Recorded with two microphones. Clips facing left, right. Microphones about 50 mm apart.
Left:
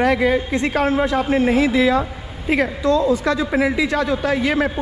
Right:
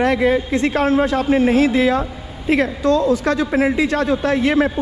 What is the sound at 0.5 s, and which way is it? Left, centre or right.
A man's voice, right.